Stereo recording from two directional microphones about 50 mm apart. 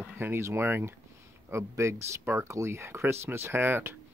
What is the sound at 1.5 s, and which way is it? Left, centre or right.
Speech, right.